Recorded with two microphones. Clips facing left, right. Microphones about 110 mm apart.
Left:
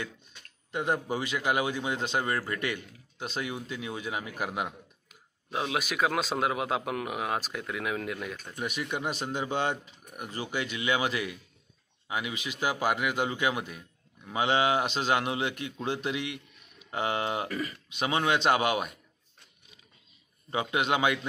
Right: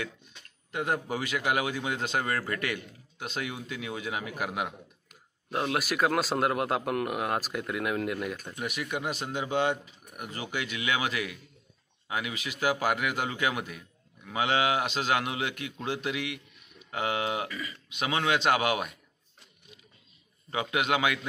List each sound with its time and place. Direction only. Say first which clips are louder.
0.7 s a man's voice: left 1 dB; 25° left (ahead or behind)
5.5 s a man's voice: right 2 dB; centre (ahead or behind)
8.7 s a man's voice: even; 25° left (ahead or behind)
17.5 s speech: left 5 dB; 55° left (ahead or behind)
17.8 s a man's voice: even; 30° left (ahead or behind)
20.5 s a man's voice: even; 30° left (ahead or behind)